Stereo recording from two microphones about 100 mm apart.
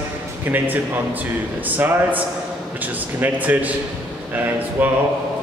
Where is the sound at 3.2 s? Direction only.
15° right (ahead or behind).